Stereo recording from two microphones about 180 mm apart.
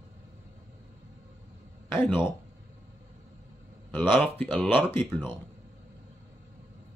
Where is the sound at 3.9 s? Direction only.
10° left (ahead or behind).